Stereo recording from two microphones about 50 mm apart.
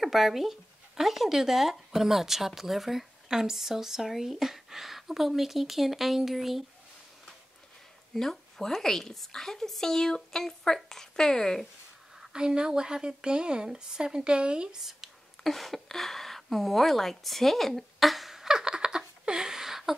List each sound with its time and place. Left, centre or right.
0.0 s speech: centre
8.1 s a woman's voice: centre
12.2 s speech: centre
14.8 s speech: centre
15.4 s a sound: centre